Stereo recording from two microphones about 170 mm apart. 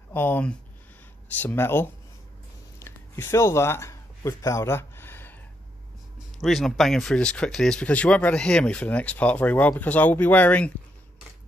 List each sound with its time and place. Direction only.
0.1 s speech: 10° left (ahead or behind)
2.8 s a sound: 15° left (ahead or behind)
6.4 s speech: centre (ahead or behind)